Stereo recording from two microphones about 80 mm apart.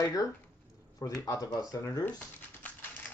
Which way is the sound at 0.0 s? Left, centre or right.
Left.